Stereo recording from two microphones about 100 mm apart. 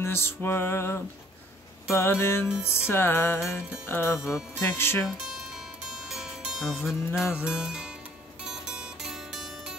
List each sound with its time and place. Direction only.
0.0 s music: 25° left (ahead or behind)
5.0 s music: 5° right (ahead or behind)